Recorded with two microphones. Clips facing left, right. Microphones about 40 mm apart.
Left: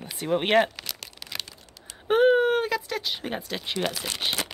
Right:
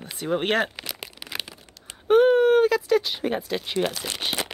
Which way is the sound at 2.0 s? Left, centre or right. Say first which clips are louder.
Right 3 dB; centre.